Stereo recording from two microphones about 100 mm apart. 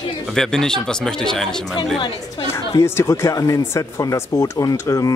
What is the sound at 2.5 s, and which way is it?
Speech, 30° left (ahead or behind).